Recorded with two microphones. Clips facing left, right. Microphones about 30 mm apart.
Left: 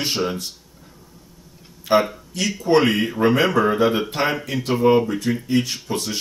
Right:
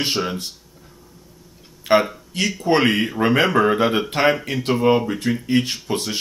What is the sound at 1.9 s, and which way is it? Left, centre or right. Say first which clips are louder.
Speech: right 1 dB; right.